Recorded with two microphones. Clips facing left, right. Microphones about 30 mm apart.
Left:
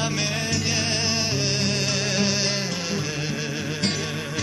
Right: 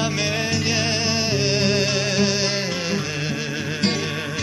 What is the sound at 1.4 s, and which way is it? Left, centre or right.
Music, centre.